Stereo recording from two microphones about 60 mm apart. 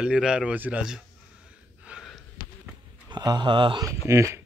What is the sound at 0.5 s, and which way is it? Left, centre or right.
Speech, right.